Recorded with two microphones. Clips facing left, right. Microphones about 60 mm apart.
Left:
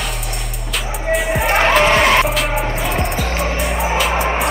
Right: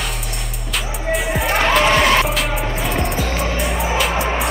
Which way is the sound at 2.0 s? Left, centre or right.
Centre.